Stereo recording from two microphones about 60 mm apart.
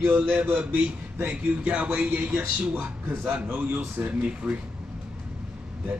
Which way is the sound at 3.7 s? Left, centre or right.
Right.